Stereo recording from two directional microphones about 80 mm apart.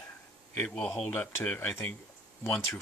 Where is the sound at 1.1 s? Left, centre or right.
Left.